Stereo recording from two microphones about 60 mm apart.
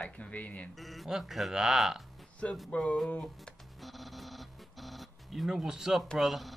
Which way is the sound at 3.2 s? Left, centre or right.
Centre.